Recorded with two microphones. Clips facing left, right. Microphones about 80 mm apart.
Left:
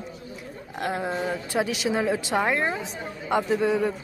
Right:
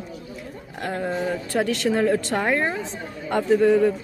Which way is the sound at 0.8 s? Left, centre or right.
Centre.